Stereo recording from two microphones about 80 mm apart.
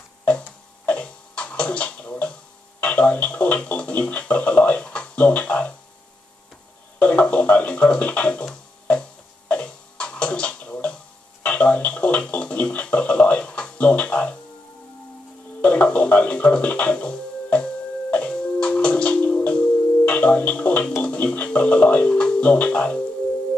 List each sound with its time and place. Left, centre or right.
0.2 s music: centre
2.8 s speech: centre
7.0 s music: centre
15.6 s speech: centre
18.1 s music: centre